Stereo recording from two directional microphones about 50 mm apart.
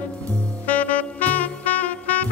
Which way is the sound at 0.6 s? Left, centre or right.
Left.